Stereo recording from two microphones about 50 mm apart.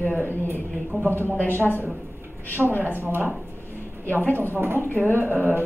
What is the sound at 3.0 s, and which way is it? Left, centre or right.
Speech, right.